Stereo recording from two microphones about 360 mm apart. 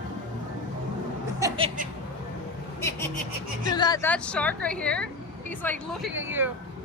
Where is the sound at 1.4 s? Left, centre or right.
Centre.